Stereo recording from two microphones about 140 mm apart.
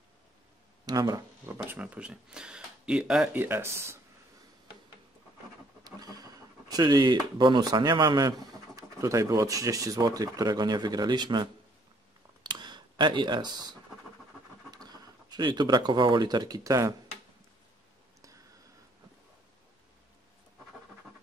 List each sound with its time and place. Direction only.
0.8 s speech: 25° right (ahead or behind)
5.9 s speech: 25° right (ahead or behind)
12.4 s camera: 30° right (ahead or behind)
14.7 s speech: 30° right (ahead or behind)